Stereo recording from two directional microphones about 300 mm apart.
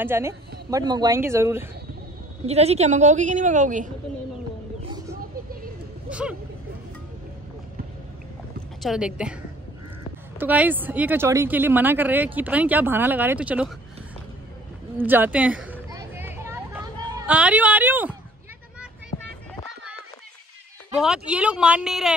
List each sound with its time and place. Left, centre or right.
0.0 s speech: centre
2.4 s a woman's voice: right
6.0 s speech: centre
8.8 s speech: centre
10.4 s speech: centre
15.0 s a sound: centre
21.0 s speech: centre